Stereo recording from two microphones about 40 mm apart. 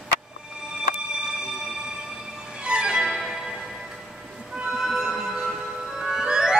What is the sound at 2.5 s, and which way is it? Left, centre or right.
Music, right.